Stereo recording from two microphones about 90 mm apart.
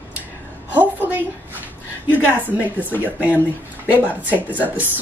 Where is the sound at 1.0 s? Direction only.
20° right (ahead or behind).